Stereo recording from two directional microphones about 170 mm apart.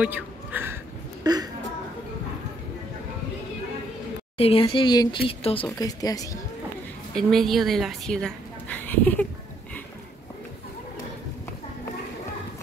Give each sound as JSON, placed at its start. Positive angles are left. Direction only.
{"t": 0.0, "sound": "speech", "side_deg": -10}
{"t": 1.2, "sound": "a sound", "side_deg": -25}
{"t": 4.4, "sound": "speech", "side_deg": 35}
{"t": 5.7, "sound": "speech", "side_deg": 20}
{"t": 7.2, "sound": "a woman's voice", "side_deg": 0}